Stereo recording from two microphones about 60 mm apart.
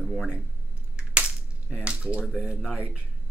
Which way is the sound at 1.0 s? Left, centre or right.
Centre.